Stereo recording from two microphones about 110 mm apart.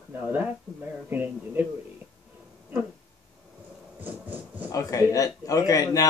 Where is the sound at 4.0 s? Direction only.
15° right (ahead or behind).